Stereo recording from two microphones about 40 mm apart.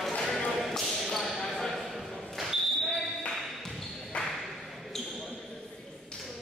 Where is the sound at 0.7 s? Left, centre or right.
Centre.